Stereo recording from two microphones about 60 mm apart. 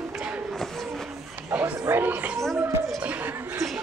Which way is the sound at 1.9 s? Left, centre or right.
Right.